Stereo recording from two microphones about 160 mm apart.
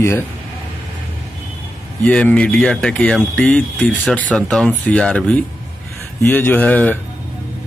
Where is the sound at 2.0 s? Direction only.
5° left (ahead or behind).